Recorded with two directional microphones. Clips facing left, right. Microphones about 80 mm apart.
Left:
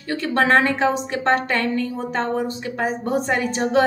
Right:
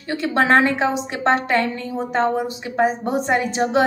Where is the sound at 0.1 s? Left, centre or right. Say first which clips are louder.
Right 1 dB; centre.